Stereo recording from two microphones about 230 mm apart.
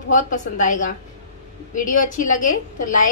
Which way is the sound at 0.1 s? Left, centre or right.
Left.